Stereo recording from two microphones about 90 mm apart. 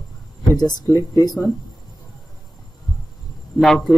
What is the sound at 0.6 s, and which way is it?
Speech, 45° left (ahead or behind).